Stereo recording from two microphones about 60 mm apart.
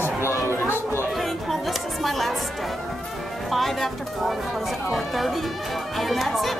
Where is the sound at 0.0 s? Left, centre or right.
Left.